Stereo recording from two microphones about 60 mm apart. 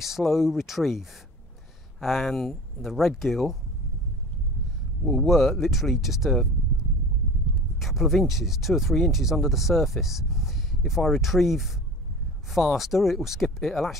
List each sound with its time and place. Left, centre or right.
0.0 s speech: centre
5.2 s speech: centre
7.8 s speech: centre